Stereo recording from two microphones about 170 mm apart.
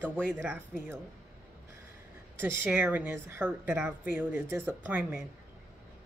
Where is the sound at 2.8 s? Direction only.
10° right (ahead or behind).